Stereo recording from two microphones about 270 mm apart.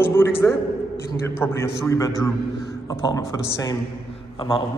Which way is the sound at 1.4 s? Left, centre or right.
Centre.